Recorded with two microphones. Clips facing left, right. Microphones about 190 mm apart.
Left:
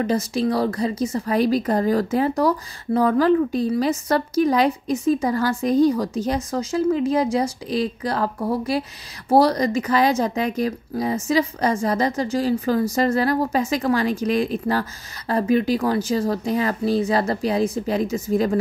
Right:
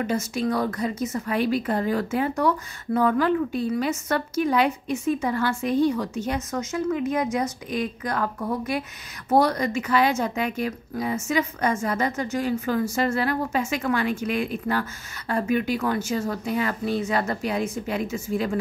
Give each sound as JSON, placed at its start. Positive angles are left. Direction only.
{"t": 0.0, "sound": "a woman's voice", "side_deg": 35}